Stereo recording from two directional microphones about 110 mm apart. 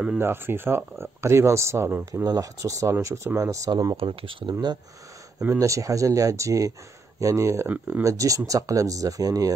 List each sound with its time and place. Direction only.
0.2 s speech: 20° right (ahead or behind)
2.2 s speech: 35° right (ahead or behind)
3.9 s speech: 55° right (ahead or behind)
5.5 s speech: 30° right (ahead or behind)